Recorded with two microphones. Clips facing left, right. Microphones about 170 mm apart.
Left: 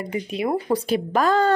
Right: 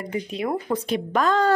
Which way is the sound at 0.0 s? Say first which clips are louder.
Left 2 dB; 10° left (ahead or behind).